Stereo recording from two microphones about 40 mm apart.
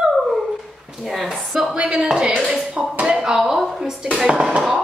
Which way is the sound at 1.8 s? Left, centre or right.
Right.